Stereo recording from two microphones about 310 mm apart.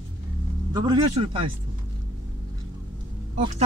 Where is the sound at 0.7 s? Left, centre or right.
Centre.